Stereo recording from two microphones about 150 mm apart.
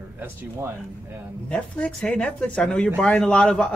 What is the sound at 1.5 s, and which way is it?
Speech, 10° left (ahead or behind).